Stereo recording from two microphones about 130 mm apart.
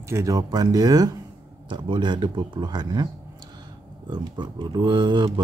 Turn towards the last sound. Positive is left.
turn(degrees=-35)  # may be behind; listen again after turning